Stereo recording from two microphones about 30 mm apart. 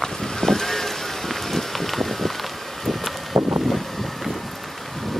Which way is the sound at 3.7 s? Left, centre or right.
Centre.